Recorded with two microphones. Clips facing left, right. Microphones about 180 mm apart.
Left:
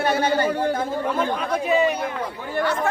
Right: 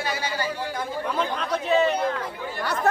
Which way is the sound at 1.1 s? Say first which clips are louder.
Left 3 dB; 10° left (ahead or behind).